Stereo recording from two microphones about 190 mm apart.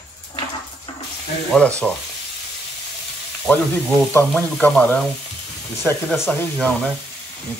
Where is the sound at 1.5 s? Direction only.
5° left (ahead or behind).